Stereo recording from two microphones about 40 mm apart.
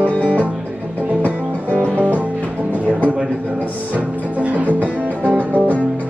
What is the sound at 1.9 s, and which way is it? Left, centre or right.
Music, right.